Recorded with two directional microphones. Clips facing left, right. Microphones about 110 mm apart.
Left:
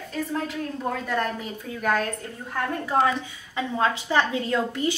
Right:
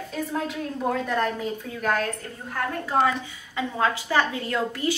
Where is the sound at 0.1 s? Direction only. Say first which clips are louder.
Left 1 dB; 5° right (ahead or behind).